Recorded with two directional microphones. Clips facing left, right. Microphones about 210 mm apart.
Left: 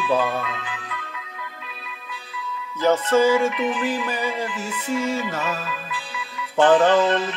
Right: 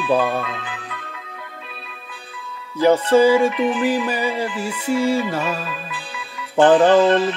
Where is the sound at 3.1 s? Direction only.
15° right (ahead or behind).